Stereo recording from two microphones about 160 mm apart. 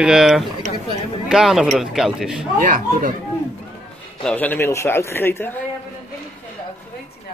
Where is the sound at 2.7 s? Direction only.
60° right (ahead or behind).